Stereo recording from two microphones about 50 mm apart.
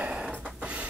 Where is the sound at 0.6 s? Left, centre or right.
Right.